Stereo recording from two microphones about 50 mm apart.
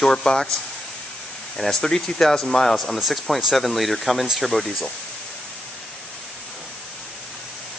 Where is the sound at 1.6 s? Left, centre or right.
Centre.